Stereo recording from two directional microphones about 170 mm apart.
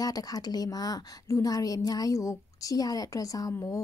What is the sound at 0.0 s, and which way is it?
A woman's voice, 20° left (ahead or behind).